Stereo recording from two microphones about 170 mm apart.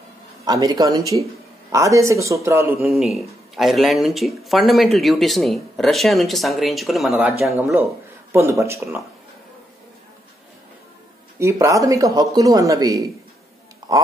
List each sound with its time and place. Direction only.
0.5 s a man's voice: 20° right (ahead or behind)
2.9 s speech: centre (ahead or behind)
8.3 s a man's voice: 15° right (ahead or behind)
11.3 s speech: 15° right (ahead or behind)